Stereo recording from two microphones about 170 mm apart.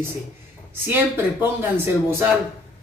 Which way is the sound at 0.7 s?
10° right (ahead or behind).